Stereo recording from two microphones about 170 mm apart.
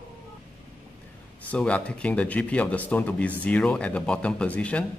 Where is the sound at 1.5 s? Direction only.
5° left (ahead or behind).